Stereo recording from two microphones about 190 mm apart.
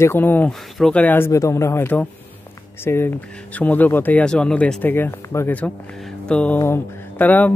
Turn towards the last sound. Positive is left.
turn(degrees=10)  # may be behind; listen again after turning